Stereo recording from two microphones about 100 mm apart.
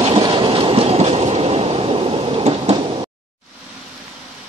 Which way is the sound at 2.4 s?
90° right.